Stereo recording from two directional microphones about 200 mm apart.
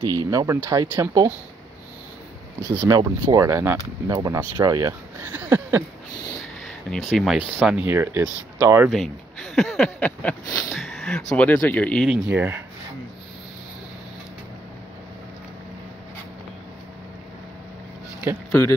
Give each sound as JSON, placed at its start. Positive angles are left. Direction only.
{"t": 0.0, "sound": "speech", "side_deg": -20}
{"t": 2.9, "sound": "speech", "side_deg": -20}
{"t": 5.4, "sound": "a sound", "side_deg": -10}
{"t": 6.6, "sound": "speech", "side_deg": 0}
{"t": 8.9, "sound": "speech", "side_deg": 0}
{"t": 12.1, "sound": "speech", "side_deg": -10}